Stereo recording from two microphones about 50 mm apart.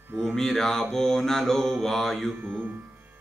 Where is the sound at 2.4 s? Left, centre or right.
Right.